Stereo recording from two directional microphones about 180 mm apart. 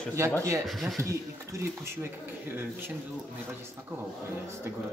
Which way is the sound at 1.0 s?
15° right (ahead or behind).